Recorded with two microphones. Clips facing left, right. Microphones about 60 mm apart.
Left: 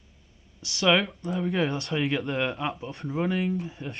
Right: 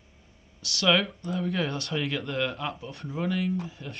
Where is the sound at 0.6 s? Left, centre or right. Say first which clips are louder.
Left 1 dB; left.